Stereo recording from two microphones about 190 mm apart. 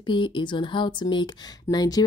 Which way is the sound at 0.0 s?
25° left (ahead or behind).